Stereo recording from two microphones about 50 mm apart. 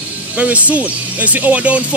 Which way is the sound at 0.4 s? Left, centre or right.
Right.